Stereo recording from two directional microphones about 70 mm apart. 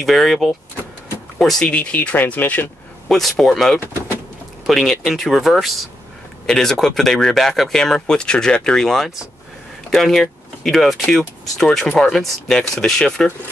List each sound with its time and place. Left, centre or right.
0.0 s speech: centre
1.7 s speech: left
3.1 s speech: centre